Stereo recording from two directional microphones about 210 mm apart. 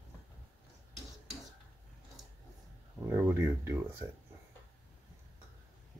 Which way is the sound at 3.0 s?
10° right (ahead or behind).